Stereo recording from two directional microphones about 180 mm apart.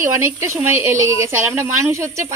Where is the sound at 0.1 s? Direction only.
15° right (ahead or behind).